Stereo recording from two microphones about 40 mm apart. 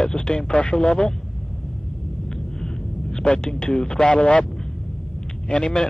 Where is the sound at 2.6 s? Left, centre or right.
Left.